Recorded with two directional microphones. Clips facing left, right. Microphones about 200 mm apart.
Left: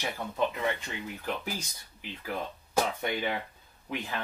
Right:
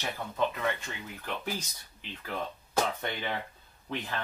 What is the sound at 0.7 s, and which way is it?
Speech, 15° left (ahead or behind).